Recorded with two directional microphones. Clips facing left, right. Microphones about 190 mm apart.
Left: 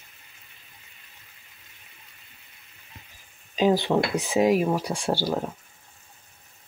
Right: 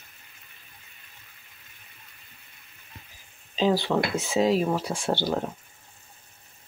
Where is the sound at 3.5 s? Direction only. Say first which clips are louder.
Left 2 dB; 15° left (ahead or behind).